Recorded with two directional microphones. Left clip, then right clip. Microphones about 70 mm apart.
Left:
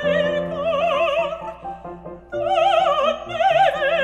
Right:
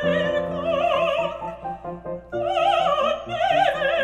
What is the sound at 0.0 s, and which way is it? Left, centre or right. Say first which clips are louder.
Music: left 2 dB; left.